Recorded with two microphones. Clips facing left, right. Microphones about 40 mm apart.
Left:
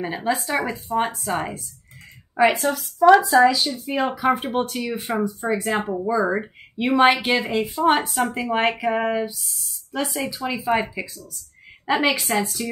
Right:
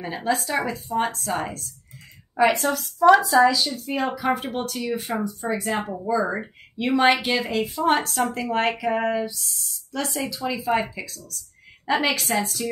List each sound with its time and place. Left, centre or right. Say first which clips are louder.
0.0 s a woman's voice: left 1 dB; centre
2.6 s speech: left 1 dB; centre
9.4 s speech: right 1 dB; centre
10.3 s speech: left 1 dB; centre